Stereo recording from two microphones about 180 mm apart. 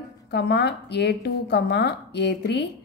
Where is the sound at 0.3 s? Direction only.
70° left (ahead or behind).